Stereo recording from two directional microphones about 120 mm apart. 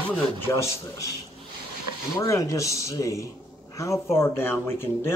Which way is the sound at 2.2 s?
30° left (ahead or behind).